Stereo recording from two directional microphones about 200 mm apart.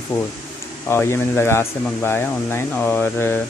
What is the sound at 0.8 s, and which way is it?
Speech, 10° left (ahead or behind).